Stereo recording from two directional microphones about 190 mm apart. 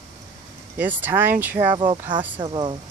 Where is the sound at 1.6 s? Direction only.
25° right (ahead or behind).